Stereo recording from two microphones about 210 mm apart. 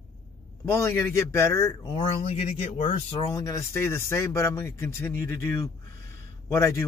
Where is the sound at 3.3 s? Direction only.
15° left (ahead or behind).